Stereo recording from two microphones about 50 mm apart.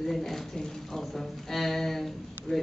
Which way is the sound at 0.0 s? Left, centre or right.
Centre.